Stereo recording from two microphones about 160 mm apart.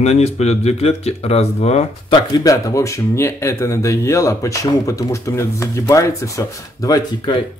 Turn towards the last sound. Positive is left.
turn(degrees=25)  # may be behind; listen again after turning